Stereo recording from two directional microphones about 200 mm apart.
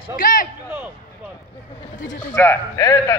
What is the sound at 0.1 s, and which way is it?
Speech, 45° left (ahead or behind).